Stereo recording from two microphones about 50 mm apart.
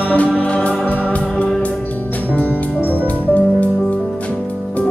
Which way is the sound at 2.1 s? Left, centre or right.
Left.